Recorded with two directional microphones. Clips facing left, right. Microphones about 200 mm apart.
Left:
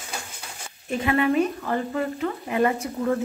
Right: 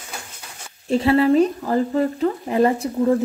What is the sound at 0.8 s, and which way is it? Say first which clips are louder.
Speech: right 6 dB; 35° right (ahead or behind).